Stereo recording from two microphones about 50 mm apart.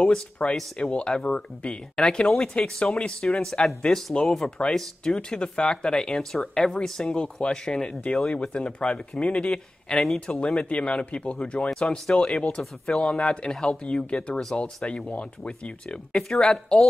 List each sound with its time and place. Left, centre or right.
0.4 s speech: left
10.2 s speech: left